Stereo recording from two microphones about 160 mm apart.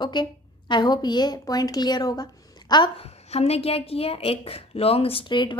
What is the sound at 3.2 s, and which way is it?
A woman's voice, 40° left (ahead or behind).